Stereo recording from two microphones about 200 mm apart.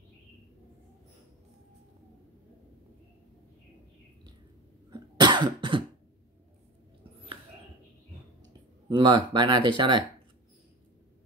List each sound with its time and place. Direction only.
4.9 s cough: 20° right (ahead or behind)
8.8 s speech: 20° right (ahead or behind)